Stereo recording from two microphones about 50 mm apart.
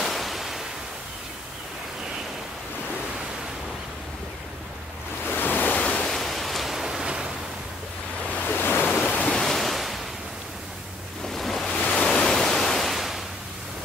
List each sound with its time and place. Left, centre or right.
0.0 s waves: centre
5.3 s waves: left
5.7 s waves: left
6.0 s pink noise: centre
8.3 s waves: left
8.5 s waves: left
9.0 s waves: left
9.3 s waves: centre
11.2 s waves: centre
11.8 s waves: centre
12.1 s pink noise: centre